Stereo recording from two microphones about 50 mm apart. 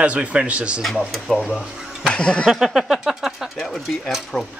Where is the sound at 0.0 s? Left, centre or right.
Right.